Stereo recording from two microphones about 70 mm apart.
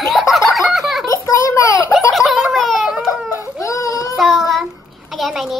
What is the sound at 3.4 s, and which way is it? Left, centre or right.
Baby cry, left.